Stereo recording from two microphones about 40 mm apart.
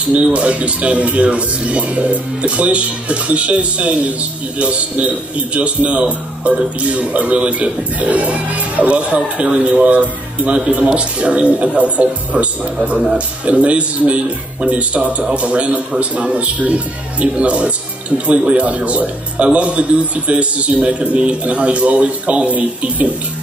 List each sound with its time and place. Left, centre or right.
0.2 s a man's voice: right